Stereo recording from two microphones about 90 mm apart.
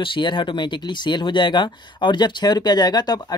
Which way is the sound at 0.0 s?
65° left (ahead or behind).